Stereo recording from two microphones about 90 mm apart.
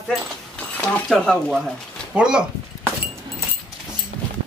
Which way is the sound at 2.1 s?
10° right (ahead or behind).